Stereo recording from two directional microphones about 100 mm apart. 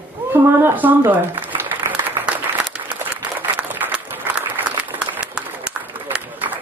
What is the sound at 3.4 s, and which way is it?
Applause, 20° right (ahead or behind).